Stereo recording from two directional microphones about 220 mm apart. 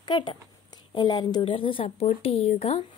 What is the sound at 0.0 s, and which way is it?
A woman's voice, 20° left (ahead or behind).